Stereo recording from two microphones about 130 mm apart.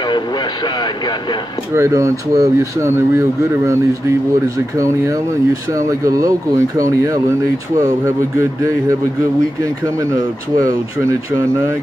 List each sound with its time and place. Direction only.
1.7 s speech: 20° right (ahead or behind)
4.7 s speech: 25° right (ahead or behind)